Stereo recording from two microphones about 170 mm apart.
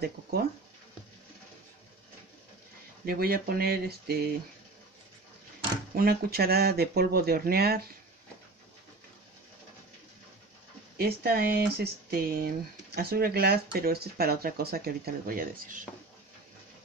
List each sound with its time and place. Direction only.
0.0 s speech: 70° right (ahead or behind)
3.1 s speech: 65° right (ahead or behind)
5.9 s speech: 65° right (ahead or behind)
11.0 s speech: 65° right (ahead or behind)